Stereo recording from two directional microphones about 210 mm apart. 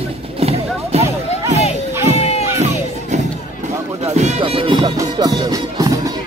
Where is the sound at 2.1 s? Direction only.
30° left (ahead or behind).